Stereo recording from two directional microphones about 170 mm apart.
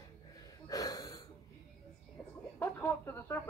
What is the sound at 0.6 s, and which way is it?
Gasp, 20° left (ahead or behind).